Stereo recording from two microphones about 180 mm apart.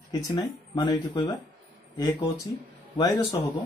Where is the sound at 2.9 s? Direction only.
20° left (ahead or behind).